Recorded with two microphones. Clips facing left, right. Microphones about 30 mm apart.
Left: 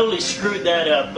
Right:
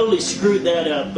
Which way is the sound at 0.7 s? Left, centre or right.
Left.